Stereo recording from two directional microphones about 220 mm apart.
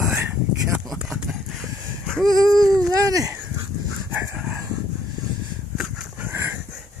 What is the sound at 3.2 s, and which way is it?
Dog, 10° right (ahead or behind).